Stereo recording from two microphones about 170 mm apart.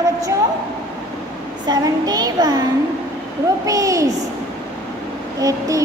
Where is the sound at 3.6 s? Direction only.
20° right (ahead or behind).